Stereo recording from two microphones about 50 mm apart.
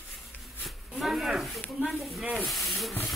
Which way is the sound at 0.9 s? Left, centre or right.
Centre.